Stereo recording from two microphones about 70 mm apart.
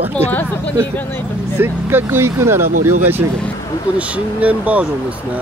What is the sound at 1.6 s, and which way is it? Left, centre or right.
Speech, right.